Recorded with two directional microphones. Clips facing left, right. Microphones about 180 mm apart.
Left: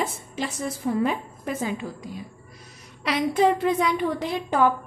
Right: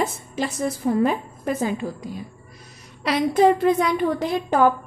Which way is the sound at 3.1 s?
40° right (ahead or behind).